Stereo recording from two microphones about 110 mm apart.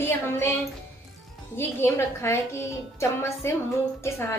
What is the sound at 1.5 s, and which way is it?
A woman's voice, 25° left (ahead or behind).